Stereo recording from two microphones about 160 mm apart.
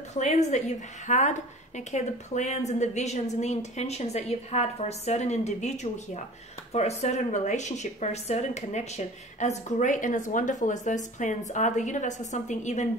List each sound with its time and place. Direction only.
0.1 s a woman's voice: 45° left (ahead or behind)
6.7 s a woman's voice: 40° left (ahead or behind)